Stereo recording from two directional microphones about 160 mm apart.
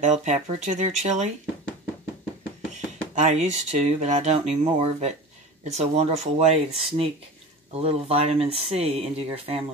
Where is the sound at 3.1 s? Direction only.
45° right (ahead or behind).